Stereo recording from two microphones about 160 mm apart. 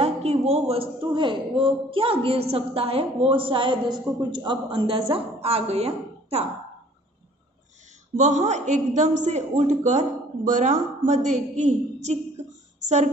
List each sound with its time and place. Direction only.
0.0 s a woman's voice: 40° right (ahead or behind)
8.2 s speech: 45° right (ahead or behind)